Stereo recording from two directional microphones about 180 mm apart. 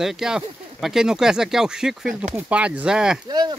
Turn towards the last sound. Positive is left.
turn(degrees=-25)  # may be behind; listen again after turning